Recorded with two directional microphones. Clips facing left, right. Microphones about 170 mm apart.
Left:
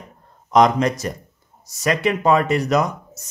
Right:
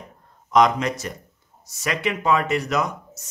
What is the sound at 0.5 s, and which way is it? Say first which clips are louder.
Speech: left 3 dB; 35° left (ahead or behind).